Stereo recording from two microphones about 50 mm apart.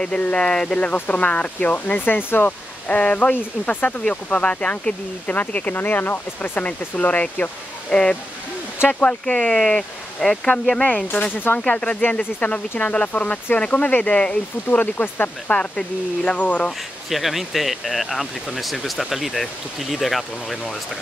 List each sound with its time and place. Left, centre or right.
0.2 s speech: left
0.9 s speech: left
2.9 s speech: left
7.9 s speech: centre
11.3 s speech: left
11.6 s speech: centre
12.0 s speech: left
14.1 s speech: left
14.7 s speech: left
15.5 s speech: centre
17.1 s speech: centre